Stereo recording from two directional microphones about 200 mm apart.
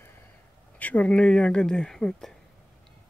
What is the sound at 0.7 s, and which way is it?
Speech, 5° left (ahead or behind).